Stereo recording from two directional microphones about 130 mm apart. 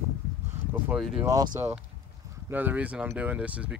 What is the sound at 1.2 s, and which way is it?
Speech, 30° right (ahead or behind).